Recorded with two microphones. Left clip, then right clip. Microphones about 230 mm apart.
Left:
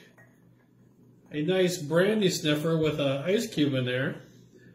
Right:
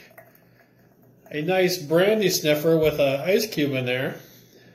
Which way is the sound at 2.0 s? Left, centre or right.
Centre.